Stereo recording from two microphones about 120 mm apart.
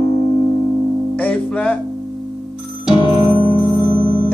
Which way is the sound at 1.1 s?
10° left (ahead or behind).